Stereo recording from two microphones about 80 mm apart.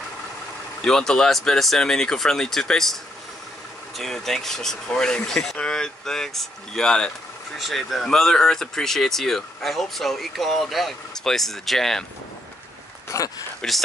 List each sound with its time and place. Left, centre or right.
0.8 s speech: centre
13.1 s speech: left
13.6 s speech: centre